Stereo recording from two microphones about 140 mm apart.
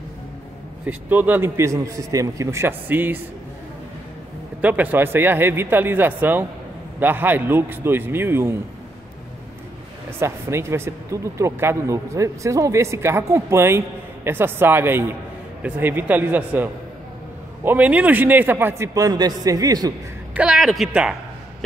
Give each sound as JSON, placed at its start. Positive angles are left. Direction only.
{"t": 0.8, "sound": "speech", "side_deg": -10}
{"t": 4.6, "sound": "a man's voice", "side_deg": -10}
{"t": 10.1, "sound": "a man's voice", "side_deg": -20}
{"t": 20.3, "sound": "a man's voice", "side_deg": -5}